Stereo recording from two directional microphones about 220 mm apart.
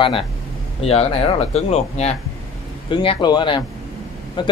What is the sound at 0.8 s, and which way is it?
Speech, 25° left (ahead or behind).